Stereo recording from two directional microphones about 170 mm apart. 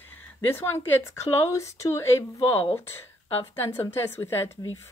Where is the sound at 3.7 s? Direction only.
15° left (ahead or behind).